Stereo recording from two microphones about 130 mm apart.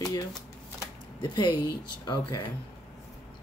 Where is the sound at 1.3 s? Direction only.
35° left (ahead or behind).